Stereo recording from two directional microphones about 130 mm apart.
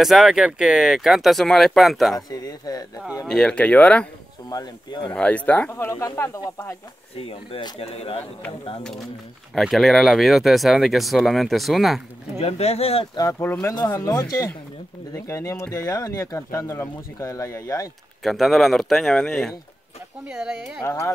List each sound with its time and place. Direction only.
0.0 s speech: centre (ahead or behind)
2.1 s speech: 30° left (ahead or behind)
3.3 s speech: 5° left (ahead or behind)
4.5 s speech: 30° left (ahead or behind)
5.1 s speech: 10° left (ahead or behind)
7.2 s speech: 45° left (ahead or behind)
9.6 s speech: centre (ahead or behind)
12.4 s speech: 55° left (ahead or behind)
13.3 s speech: 15° left (ahead or behind)
18.2 s speech: centre (ahead or behind)
20.2 s speech: 5° right (ahead or behind)
20.8 s speech: 20° left (ahead or behind)